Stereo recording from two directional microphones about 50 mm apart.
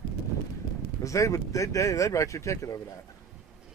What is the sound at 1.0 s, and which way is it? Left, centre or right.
Speech, left.